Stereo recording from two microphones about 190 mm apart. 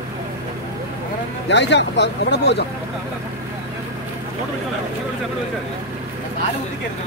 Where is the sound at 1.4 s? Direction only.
65° left (ahead or behind).